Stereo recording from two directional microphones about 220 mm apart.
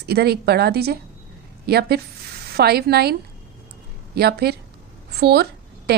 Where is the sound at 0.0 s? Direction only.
45° right (ahead or behind).